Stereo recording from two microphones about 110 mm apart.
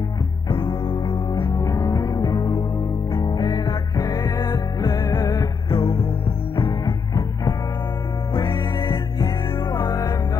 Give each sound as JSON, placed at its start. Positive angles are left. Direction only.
{"t": 0.5, "sound": "music", "side_deg": 45}
{"t": 1.3, "sound": "music", "side_deg": 20}
{"t": 5.7, "sound": "music", "side_deg": 55}
{"t": 6.5, "sound": "music", "side_deg": 45}
{"t": 9.8, "sound": "music", "side_deg": 30}